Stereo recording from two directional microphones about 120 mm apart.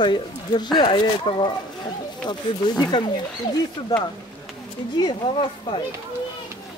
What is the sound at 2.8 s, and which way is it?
Speech, 40° left (ahead or behind).